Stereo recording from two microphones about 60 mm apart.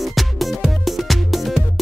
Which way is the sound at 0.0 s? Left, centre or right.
Centre.